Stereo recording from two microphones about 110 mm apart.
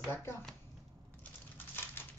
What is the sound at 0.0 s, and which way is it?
Shuffling cards, 20° left (ahead or behind).